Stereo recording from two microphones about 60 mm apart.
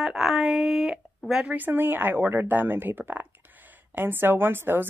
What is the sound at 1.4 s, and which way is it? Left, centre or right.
Speech, right.